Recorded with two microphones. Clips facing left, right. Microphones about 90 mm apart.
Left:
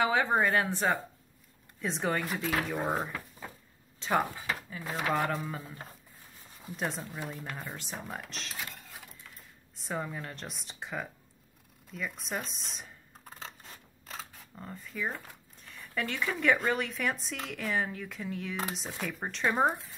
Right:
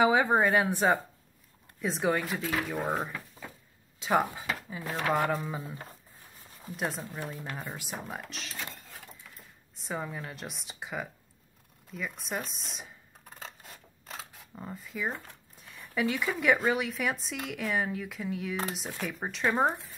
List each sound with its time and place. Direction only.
0.0 s speech: 15° right (ahead or behind)
1.8 s speech: 5° right (ahead or behind)
4.0 s speech: 15° right (ahead or behind)
4.8 s speech: centre (ahead or behind)
5.1 s speech: 10° right (ahead or behind)
6.8 s speech: 5° right (ahead or behind)
13.4 s scissors: 5° right (ahead or behind)
15.7 s speech: 5° right (ahead or behind)